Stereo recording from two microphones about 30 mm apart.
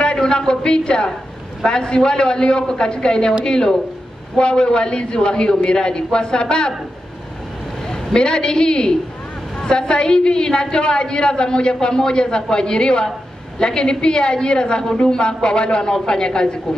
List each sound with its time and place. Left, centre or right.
0.2 s a sound: left
1.6 s a woman's voice: left
7.8 s a man's voice: left